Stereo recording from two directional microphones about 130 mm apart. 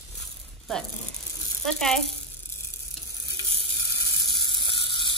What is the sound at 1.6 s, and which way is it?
Speech, 5° left (ahead or behind).